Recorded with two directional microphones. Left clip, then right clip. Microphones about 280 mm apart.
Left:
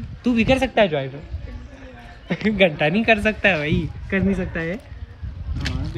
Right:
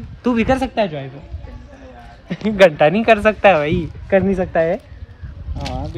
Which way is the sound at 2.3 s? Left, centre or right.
Centre.